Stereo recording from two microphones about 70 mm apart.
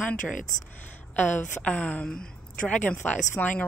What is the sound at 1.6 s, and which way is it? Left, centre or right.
A woman's voice, centre.